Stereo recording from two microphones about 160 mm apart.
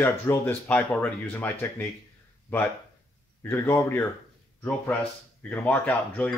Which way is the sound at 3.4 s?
15° left (ahead or behind).